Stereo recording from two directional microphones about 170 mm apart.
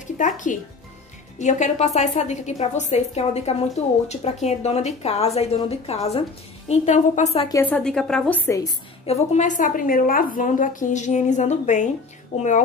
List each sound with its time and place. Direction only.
0.0 s a woman's voice: 50° left (ahead or behind)
7.7 s a woman's voice: 5° left (ahead or behind)
8.5 s a woman's voice: 20° left (ahead or behind)
9.0 s a woman's voice: 40° left (ahead or behind)